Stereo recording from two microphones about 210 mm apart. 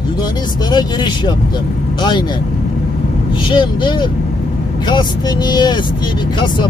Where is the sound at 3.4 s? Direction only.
20° left (ahead or behind).